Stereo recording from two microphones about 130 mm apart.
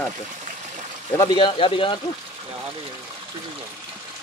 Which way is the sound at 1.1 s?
35° left (ahead or behind).